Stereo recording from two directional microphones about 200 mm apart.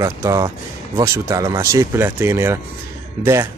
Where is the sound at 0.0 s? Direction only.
15° right (ahead or behind).